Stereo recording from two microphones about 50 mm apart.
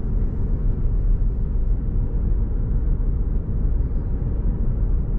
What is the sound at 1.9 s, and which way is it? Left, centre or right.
Vehicle, centre.